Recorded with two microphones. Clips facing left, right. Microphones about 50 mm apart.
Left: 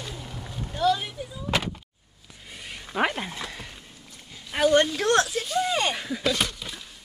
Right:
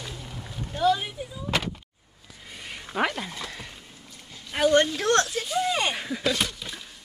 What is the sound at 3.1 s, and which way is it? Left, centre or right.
Speech, centre.